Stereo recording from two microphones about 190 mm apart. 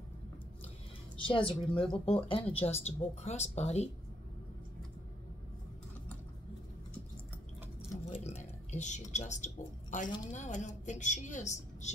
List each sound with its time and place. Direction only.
1.2 s speech: 25° left (ahead or behind)
7.9 s a sound: 35° left (ahead or behind)
10.3 s speech: 40° left (ahead or behind)